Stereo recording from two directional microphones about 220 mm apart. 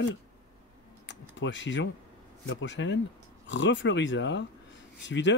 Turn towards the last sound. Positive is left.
turn(degrees=55)  # may be behind; listen again after turning